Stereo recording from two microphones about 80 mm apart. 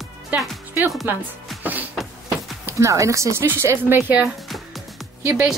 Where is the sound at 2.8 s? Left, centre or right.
Right.